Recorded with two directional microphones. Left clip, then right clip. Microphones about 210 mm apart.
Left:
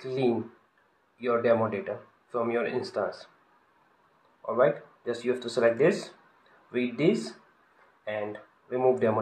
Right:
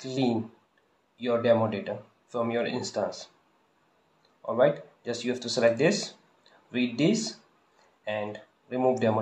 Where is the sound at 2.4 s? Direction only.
Centre (ahead or behind).